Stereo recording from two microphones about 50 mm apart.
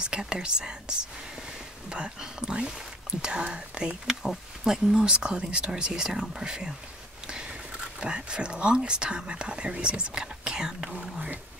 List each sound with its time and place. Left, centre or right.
0.0 s speech: centre
4.1 s speech: centre
7.2 s a sound: centre
8.0 s speech: centre